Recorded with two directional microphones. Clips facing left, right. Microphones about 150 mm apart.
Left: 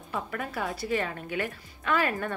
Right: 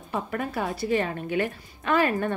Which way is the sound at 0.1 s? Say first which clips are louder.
Right 4 dB; 35° right (ahead or behind).